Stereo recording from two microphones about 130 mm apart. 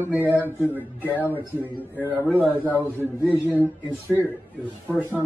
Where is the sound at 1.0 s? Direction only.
15° left (ahead or behind).